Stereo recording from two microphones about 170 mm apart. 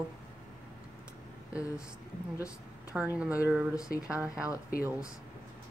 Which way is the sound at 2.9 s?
5° right (ahead or behind).